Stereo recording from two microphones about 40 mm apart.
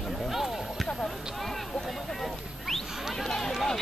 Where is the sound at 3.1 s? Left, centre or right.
Centre.